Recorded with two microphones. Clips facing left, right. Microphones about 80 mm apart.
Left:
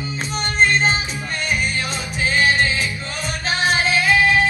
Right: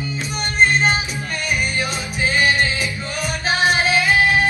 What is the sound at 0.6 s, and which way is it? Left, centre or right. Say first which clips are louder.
Music: right 1 dB; right.